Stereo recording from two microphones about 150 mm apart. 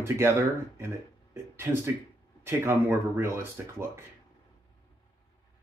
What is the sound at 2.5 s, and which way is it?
Speech, 15° right (ahead or behind).